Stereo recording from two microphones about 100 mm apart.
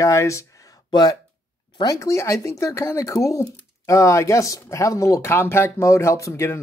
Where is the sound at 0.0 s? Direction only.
30° left (ahead or behind).